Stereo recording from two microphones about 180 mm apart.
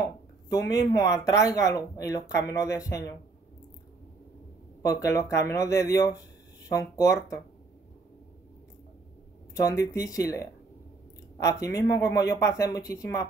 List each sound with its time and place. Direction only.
0.5 s speech: 20° left (ahead or behind)
4.8 s speech: 15° left (ahead or behind)
9.5 s speech: 20° left (ahead or behind)